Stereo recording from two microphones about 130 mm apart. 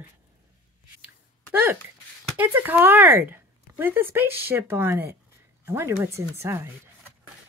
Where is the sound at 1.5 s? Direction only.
15° right (ahead or behind).